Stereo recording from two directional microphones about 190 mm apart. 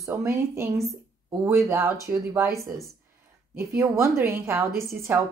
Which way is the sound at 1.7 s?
15° right (ahead or behind).